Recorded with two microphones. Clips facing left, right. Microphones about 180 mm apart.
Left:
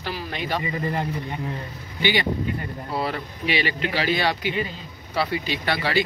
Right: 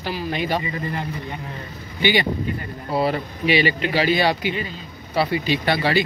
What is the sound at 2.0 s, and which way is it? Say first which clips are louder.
Speech: right 3 dB; 15° right (ahead or behind).